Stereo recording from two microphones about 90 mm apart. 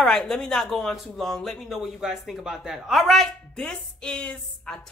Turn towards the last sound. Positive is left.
turn(degrees=10)  # may be behind; listen again after turning